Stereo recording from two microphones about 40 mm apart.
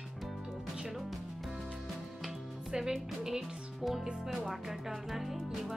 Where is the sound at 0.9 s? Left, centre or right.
Centre.